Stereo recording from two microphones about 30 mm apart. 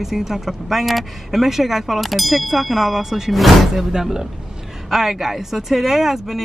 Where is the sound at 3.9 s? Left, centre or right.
Centre.